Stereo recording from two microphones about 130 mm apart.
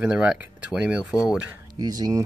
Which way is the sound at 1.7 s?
30° right (ahead or behind).